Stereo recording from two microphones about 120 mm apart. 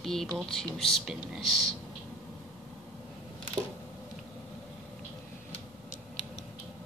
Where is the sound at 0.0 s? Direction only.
5° left (ahead or behind).